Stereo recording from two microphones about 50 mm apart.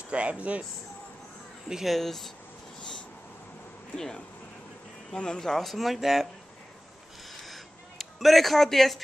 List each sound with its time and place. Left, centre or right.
0.1 s speech: right
1.7 s speech: centre
2.0 s speech: centre
3.9 s speech: centre
7.3 s a sound: centre